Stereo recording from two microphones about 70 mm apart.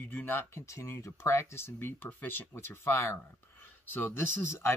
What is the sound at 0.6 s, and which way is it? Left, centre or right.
Speech, left.